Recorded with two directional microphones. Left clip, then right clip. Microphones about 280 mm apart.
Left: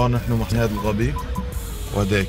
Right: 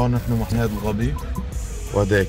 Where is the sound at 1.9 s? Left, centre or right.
Right.